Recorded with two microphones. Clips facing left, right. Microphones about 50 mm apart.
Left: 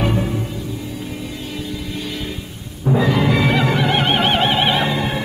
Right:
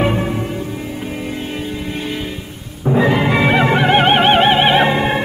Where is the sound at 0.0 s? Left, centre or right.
Right.